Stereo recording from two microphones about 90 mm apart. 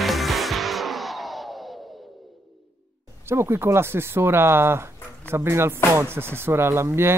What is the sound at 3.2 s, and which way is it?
Speech, 30° right (ahead or behind).